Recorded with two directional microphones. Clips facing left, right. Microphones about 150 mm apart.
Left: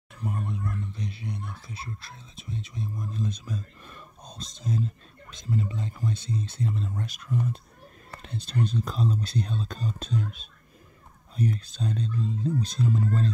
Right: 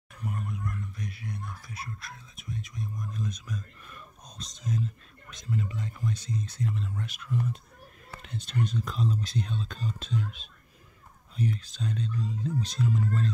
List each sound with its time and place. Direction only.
0.2 s speech: 30° left (ahead or behind)